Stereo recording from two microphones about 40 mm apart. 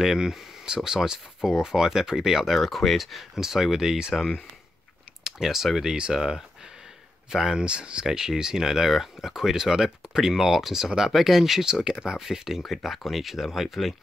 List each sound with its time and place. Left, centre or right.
0.0 s speech: centre
2.5 s speech: centre
5.2 s speech: centre
7.5 s speech: right
8.1 s speech: centre
12.6 s speech: centre